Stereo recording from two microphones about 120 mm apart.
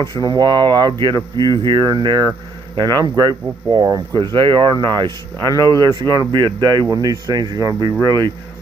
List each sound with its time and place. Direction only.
0.0 s speech: 30° right (ahead or behind)